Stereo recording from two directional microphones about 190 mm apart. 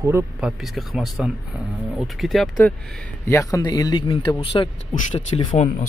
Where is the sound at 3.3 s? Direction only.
15° left (ahead or behind).